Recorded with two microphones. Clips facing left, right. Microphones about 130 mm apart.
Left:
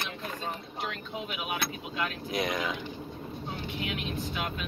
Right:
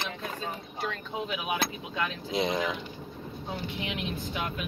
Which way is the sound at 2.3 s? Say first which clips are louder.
Right 3 dB; 25° right (ahead or behind).